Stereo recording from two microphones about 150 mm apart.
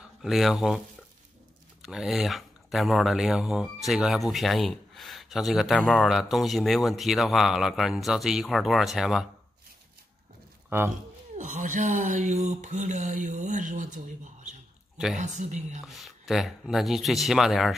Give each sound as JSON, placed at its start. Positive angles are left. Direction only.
{"t": 0.2, "sound": "speech", "side_deg": 0}
{"t": 10.7, "sound": "speech", "side_deg": -15}
{"t": 11.3, "sound": "speech", "side_deg": -55}
{"t": 15.1, "sound": "speech", "side_deg": -50}
{"t": 15.8, "sound": "speech", "side_deg": 0}